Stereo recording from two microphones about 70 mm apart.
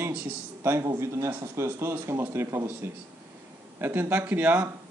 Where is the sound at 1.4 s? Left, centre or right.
Right.